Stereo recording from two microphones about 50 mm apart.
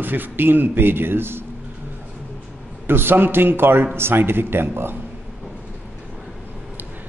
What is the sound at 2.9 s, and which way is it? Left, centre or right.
A man's voice, right.